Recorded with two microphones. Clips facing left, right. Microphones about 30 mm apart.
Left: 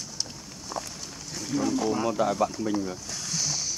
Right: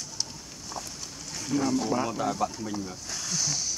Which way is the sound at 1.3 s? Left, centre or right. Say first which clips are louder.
Right 1 dB; centre.